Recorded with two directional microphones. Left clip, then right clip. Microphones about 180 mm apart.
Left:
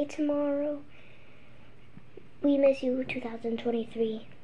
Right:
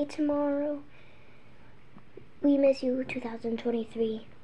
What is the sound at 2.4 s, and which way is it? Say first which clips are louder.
A woman's voice: even; 20° right (ahead or behind).